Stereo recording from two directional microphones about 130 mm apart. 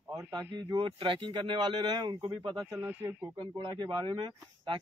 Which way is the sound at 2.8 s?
15° right (ahead or behind).